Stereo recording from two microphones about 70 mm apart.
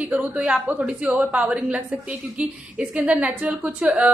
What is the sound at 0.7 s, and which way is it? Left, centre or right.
A woman's voice, right.